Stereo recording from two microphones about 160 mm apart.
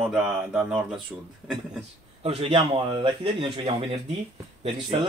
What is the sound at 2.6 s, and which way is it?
Speech, 25° right (ahead or behind).